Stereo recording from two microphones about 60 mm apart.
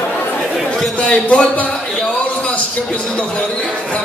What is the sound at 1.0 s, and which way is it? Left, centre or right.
Speech, left.